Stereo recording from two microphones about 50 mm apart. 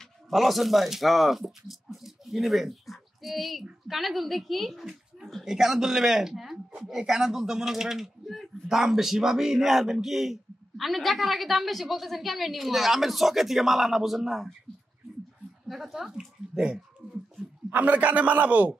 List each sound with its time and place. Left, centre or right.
0.3 s a woman's voice: centre
15.7 s a woman's voice: centre
17.6 s a man's voice: right